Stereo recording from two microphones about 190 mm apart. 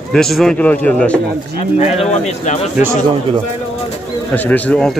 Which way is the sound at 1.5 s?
35° left (ahead or behind).